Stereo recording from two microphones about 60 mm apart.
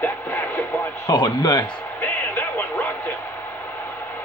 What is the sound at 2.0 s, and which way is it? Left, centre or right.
Music, left.